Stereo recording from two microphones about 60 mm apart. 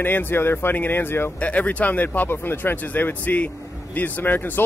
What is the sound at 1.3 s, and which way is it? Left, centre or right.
Speech, left.